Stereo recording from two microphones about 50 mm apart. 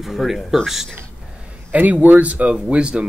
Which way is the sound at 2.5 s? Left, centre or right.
Centre.